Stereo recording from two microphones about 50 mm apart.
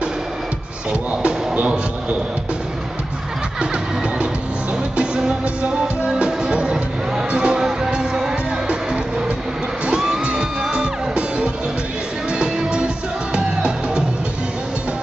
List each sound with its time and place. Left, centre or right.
1.2 s speech: right
4.9 s music: centre